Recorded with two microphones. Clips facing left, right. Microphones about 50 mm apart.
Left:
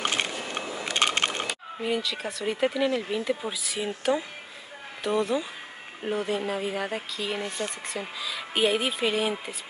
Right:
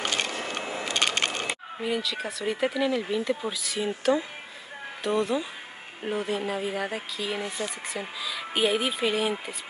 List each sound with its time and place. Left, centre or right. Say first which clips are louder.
0.8 s crushing: left 2 dB; left
1.8 s speech: left 1 dB; centre